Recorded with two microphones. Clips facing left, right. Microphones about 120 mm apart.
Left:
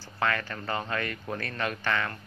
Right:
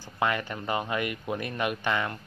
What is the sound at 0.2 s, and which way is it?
Speech, 15° right (ahead or behind).